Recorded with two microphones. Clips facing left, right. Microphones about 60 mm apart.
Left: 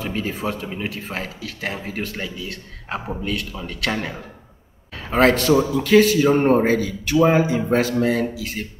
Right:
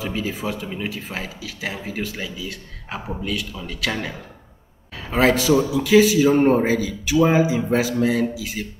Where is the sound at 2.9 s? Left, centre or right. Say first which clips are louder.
Left 2 dB; centre.